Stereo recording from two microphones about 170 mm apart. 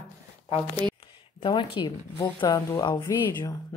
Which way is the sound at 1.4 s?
30° left (ahead or behind).